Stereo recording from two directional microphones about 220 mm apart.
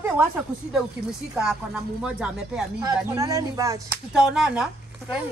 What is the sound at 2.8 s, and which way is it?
Speech, 15° right (ahead or behind).